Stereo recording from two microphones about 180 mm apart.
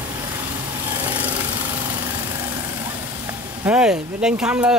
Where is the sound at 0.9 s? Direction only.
25° right (ahead or behind).